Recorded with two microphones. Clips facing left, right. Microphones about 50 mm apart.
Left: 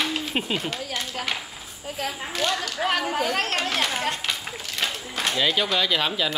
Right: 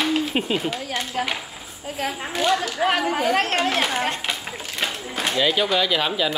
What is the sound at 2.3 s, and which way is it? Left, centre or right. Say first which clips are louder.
Speech: right 5 dB; centre.